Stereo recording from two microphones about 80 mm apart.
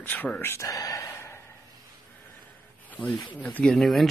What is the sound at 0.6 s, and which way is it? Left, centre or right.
Speech, left.